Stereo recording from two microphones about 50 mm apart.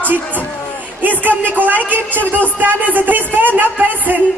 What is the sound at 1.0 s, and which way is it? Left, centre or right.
A woman's voice, right.